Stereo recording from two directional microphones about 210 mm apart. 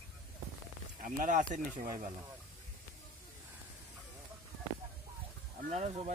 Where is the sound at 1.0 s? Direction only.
40° right (ahead or behind).